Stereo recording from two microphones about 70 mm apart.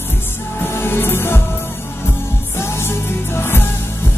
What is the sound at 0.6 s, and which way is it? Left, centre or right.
Music, left.